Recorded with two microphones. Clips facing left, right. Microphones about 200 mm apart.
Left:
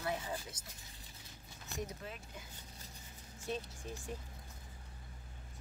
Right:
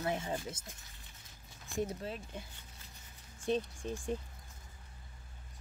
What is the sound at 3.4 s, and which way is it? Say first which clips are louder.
Speech: right 8 dB; 30° right (ahead or behind).